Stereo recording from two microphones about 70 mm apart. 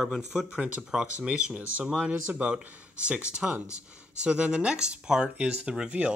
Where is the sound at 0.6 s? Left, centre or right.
Centre.